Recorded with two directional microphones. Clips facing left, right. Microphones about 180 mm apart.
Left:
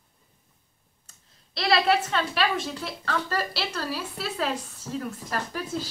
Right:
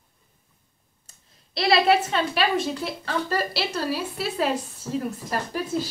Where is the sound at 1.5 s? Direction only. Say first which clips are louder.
Right 3 dB; 10° right (ahead or behind).